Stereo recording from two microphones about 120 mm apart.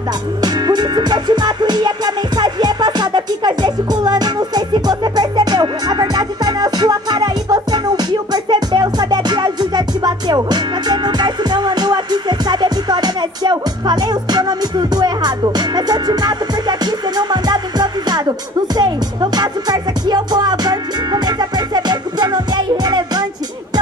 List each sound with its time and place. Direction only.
0.4 s music: 35° right (ahead or behind)